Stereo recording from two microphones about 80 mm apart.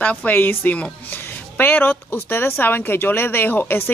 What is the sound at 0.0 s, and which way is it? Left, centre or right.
A woman's voice, centre.